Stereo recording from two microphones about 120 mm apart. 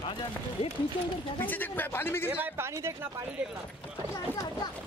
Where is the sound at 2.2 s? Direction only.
15° right (ahead or behind).